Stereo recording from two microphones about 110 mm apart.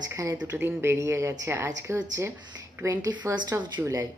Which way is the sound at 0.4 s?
20° right (ahead or behind).